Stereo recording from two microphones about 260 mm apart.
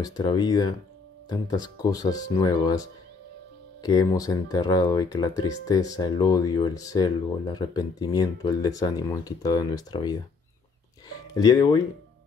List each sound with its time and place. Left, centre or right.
0.0 s speech: centre